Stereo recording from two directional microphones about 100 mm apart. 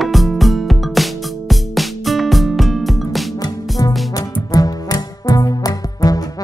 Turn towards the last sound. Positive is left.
turn(degrees=40)  # may be behind; listen again after turning